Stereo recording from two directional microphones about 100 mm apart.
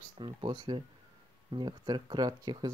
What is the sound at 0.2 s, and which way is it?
Speech, 55° right (ahead or behind).